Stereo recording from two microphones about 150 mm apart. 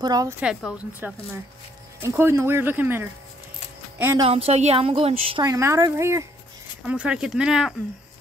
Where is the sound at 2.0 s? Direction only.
15° right (ahead or behind).